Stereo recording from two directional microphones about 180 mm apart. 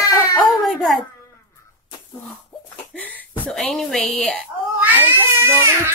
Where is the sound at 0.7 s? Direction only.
Centre (ahead or behind).